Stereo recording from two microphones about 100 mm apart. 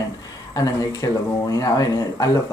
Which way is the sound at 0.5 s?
35° left (ahead or behind).